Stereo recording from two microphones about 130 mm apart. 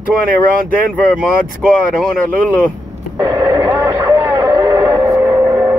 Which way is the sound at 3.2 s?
25° right (ahead or behind).